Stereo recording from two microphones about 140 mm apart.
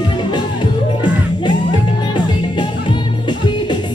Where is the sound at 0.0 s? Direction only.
35° left (ahead or behind).